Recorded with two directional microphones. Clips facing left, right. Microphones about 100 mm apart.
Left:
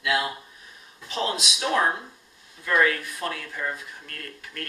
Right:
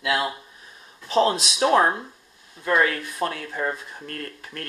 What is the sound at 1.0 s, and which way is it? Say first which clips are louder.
Speech: right 8 dB; 35° right (ahead or behind).